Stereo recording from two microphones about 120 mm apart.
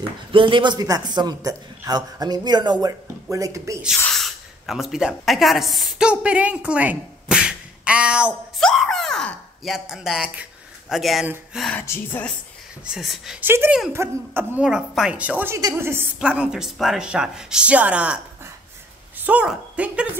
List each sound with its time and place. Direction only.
0.3 s a man's voice: 45° right (ahead or behind); by 3.8 s 25° right (ahead or behind)
4.1 s speech: centre (ahead or behind)
8.5 s a sound: 5° left (ahead or behind)
10.9 s speech: centre (ahead or behind)
11.7 s a woman's voice: 20° left (ahead or behind)
12.8 s speech: 5° right (ahead or behind)
13.4 s speech: 15° right (ahead or behind)
14.6 s speech: 5° right (ahead or behind)
16.2 s speech: 10° right (ahead or behind)
19.2 s speech: 10° right (ahead or behind)